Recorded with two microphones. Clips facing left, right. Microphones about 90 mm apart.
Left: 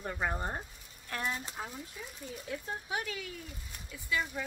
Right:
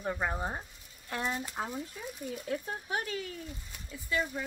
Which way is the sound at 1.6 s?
45° right (ahead or behind).